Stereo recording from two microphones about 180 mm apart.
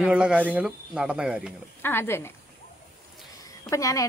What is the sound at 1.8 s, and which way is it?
Speech, 10° left (ahead or behind).